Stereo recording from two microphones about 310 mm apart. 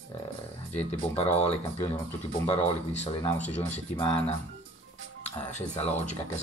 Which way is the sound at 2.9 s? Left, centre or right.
Centre.